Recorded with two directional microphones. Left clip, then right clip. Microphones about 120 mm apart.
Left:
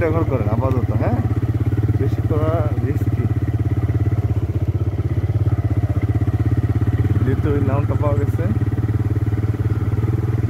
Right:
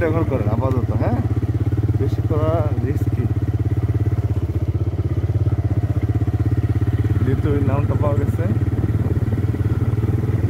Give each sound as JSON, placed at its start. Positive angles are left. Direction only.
{"t": 0.0, "sound": "speech", "side_deg": -5}
{"t": 2.3, "sound": "vehicle", "side_deg": -25}